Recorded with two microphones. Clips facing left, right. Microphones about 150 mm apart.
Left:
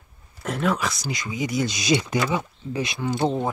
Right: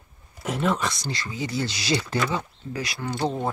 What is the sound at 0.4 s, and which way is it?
Speech, 5° right (ahead or behind).